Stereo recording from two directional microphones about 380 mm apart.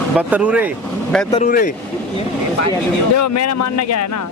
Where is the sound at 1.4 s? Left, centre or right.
Left.